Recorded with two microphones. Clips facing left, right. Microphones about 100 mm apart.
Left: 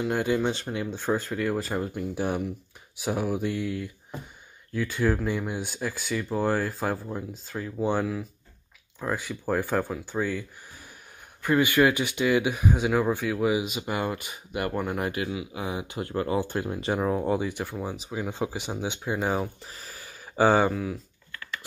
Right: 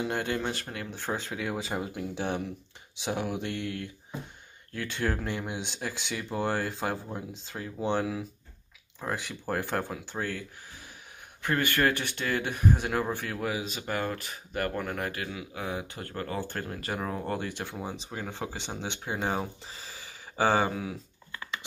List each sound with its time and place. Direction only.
0.0 s speech: 10° left (ahead or behind)
1.3 s speech: 5° right (ahead or behind)
5.0 s speech: 5° left (ahead or behind)
8.0 s speech: 5° right (ahead or behind)
9.6 s speech: 10° left (ahead or behind)
11.4 s speech: 10° left (ahead or behind)
20.7 s speech: centre (ahead or behind)
21.3 s a sound: 20° right (ahead or behind)